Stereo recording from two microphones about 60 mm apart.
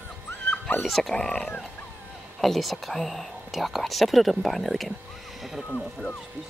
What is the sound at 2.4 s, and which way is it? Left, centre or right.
Speech, centre.